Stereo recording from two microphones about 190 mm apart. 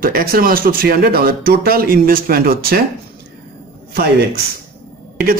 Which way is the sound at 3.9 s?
55° right (ahead or behind).